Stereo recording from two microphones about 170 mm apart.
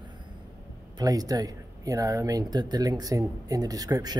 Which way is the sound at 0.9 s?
20° right (ahead or behind).